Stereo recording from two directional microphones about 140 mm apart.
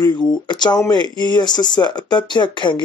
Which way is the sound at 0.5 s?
30° left (ahead or behind).